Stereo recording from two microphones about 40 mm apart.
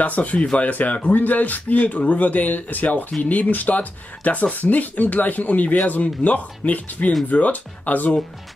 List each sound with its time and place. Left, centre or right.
0.0 s speech: left